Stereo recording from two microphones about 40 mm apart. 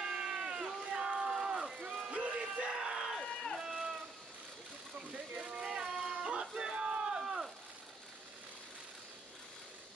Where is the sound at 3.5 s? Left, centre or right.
Centre.